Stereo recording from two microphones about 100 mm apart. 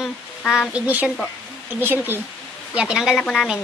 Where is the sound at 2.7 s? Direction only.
10° right (ahead or behind).